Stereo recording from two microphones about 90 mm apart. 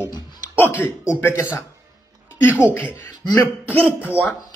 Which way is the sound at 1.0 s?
30° left (ahead or behind).